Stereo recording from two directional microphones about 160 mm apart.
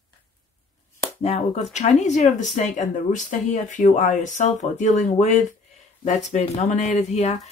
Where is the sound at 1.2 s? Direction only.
45° left (ahead or behind).